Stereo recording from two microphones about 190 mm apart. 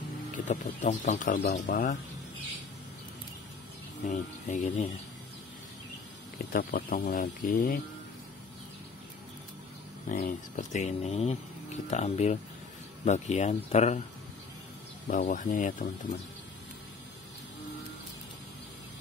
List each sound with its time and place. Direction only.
0.3 s speech: 40° left (ahead or behind)
4.1 s speech: 35° left (ahead or behind)
6.3 s speech: 50° left (ahead or behind)
10.0 s speech: 40° left (ahead or behind)
15.0 s speech: 45° left (ahead or behind)